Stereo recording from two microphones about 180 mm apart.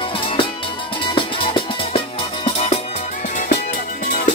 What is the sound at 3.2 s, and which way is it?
Music, 45° left (ahead or behind).